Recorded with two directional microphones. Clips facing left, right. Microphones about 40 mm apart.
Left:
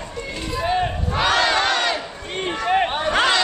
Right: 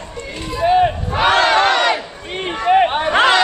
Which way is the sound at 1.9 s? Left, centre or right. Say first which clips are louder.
Right 3 dB; centre.